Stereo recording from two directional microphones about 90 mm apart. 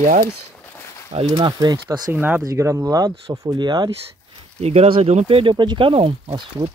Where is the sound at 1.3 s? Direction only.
50° right (ahead or behind).